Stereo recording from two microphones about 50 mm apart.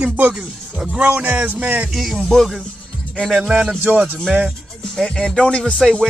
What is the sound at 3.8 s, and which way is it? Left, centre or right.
Speech, right.